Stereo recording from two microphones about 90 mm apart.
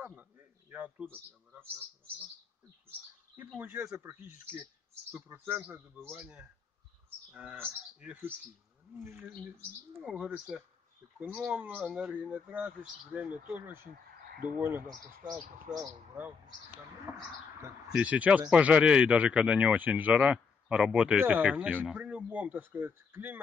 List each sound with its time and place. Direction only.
0.0 s a sound: 20° right (ahead or behind)
3.7 s speech: 10° right (ahead or behind)
8.0 s speech: 20° right (ahead or behind)
10.0 s speech: 10° right (ahead or behind)
11.1 s speech: 20° right (ahead or behind)
11.8 s speech: 5° right (ahead or behind); by 14.9 s 25° right (ahead or behind)
17.9 s speech: 15° right (ahead or behind)